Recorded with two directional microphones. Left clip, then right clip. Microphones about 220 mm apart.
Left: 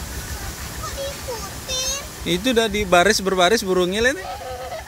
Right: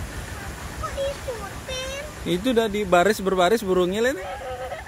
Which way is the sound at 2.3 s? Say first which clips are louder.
Left 3 dB; centre (ahead or behind).